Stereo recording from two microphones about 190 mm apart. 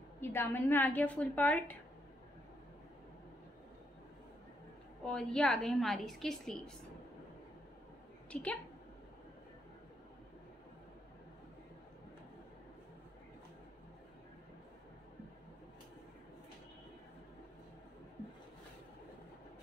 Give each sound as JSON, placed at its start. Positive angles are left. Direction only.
{"t": 0.2, "sound": "a woman's voice", "side_deg": 10}
{"t": 5.0, "sound": "a woman's voice", "side_deg": 5}
{"t": 8.3, "sound": "a woman's voice", "side_deg": 5}